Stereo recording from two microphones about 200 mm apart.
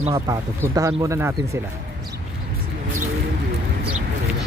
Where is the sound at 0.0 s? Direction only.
25° right (ahead or behind).